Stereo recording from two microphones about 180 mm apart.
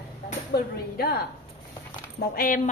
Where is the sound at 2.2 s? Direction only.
55° left (ahead or behind).